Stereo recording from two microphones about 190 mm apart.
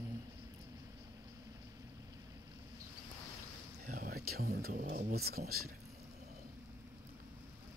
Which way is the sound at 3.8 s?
50° right (ahead or behind).